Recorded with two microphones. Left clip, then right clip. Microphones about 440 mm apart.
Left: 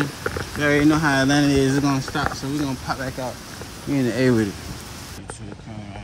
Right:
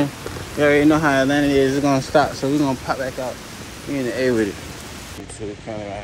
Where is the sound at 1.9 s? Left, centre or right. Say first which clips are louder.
Right 7 dB; centre.